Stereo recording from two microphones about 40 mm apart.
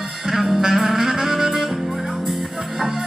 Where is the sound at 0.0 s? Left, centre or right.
Centre.